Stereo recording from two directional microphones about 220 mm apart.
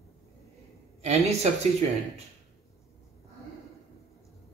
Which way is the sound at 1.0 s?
30° right (ahead or behind).